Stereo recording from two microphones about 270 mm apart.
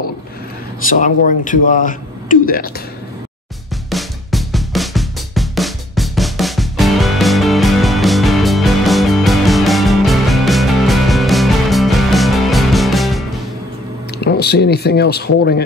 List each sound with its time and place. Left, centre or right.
0.8 s a man's voice: left
3.9 s drum: centre
14.2 s speech: left